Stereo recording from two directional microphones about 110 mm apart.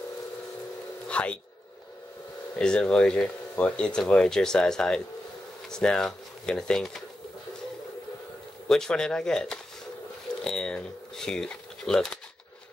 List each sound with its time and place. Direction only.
1.0 s a sound: 10° left (ahead or behind)
2.6 s speech: 10° left (ahead or behind)
8.6 s speech: 5° left (ahead or behind)